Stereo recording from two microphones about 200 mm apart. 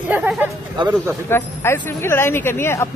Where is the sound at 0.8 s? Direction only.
25° right (ahead or behind).